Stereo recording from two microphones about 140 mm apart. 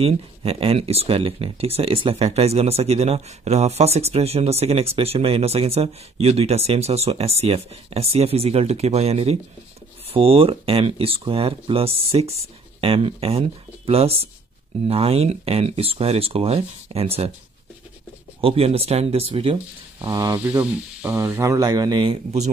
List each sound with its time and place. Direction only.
0.0 s speech: 45° right (ahead or behind)
18.4 s speech: 45° right (ahead or behind)
20.0 s speech: 25° right (ahead or behind)
20.3 s speech: 10° right (ahead or behind); by 22.2 s 35° right (ahead or behind)